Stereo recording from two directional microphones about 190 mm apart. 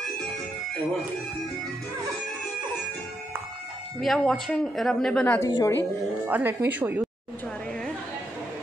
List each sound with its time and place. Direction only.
4.0 s a woman's voice: centre (ahead or behind); by 5.8 s 20° left (ahead or behind)
5.8 s a woman's voice: 10° right (ahead or behind)